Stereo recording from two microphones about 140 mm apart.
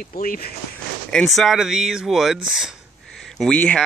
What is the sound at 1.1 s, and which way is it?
Speech, 5° left (ahead or behind).